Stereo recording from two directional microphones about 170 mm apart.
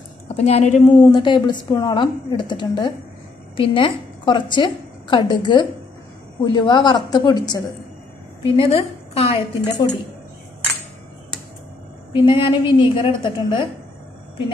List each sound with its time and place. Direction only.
0.4 s a woman's voice: 40° left (ahead or behind); by 7.6 s 25° left (ahead or behind)
8.5 s a woman's voice: 35° left (ahead or behind)
12.1 s a woman's voice: 30° left (ahead or behind)